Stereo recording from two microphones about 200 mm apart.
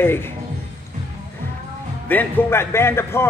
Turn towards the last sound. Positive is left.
turn(degrees=10)  # may be behind; listen again after turning